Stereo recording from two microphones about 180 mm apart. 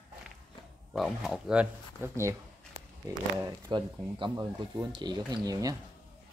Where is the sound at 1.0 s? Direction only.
Centre (ahead or behind); by 5.8 s 20° right (ahead or behind).